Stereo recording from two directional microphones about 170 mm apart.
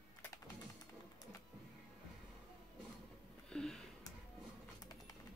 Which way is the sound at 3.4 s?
5° left (ahead or behind).